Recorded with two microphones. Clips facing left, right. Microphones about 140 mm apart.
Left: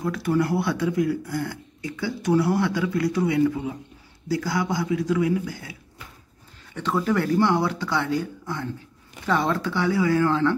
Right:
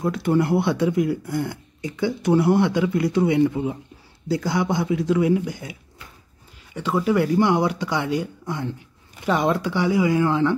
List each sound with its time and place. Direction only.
0.0 s speech: 25° right (ahead or behind)